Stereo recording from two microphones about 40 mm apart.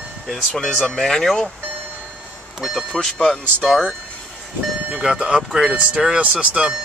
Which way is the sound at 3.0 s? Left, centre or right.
Centre.